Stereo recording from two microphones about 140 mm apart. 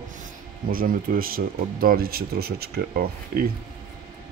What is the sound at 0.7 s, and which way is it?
Speech, 90° right.